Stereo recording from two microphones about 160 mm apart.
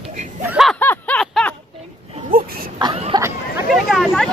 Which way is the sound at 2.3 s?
70° right (ahead or behind).